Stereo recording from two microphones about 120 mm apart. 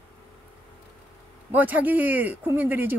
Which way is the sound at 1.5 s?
15° right (ahead or behind).